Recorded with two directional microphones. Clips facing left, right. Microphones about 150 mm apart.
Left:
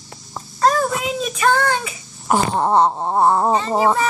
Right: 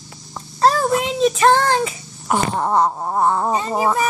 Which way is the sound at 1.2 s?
30° right (ahead or behind).